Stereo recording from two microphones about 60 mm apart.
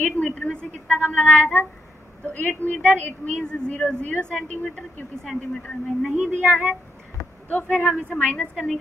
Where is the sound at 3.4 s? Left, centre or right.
Centre.